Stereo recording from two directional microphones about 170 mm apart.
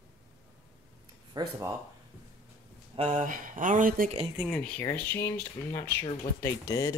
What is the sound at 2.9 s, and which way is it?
Speech, 40° right (ahead or behind).